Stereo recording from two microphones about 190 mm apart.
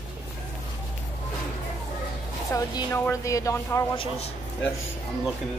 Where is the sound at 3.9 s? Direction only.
30° left (ahead or behind).